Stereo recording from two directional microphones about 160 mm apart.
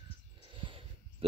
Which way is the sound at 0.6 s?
35° right (ahead or behind).